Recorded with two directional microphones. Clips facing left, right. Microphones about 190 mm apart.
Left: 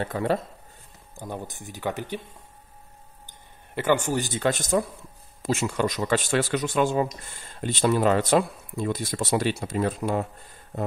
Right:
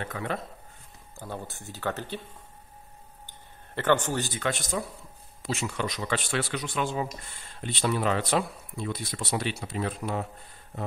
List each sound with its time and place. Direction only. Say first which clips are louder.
0.0 s speech: left 7 dB; 35° left (ahead or behind)
1.1 s speech: left 3 dB; 15° left (ahead or behind)
3.3 s a sound: right 1 dB; 10° left (ahead or behind)
4.5 s speech: left 9 dB; 45° left (ahead or behind)